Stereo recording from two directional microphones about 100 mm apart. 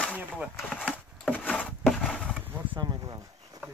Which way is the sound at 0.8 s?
10° left (ahead or behind).